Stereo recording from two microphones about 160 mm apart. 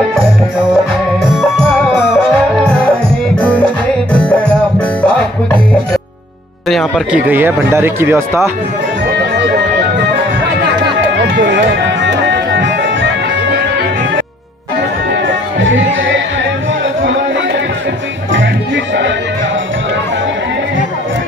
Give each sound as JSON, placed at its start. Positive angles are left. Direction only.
{"t": 3.3, "sound": "music", "side_deg": 10}
{"t": 6.7, "sound": "speech", "side_deg": 0}
{"t": 7.2, "sound": "speech", "side_deg": -15}
{"t": 11.4, "sound": "music", "side_deg": -90}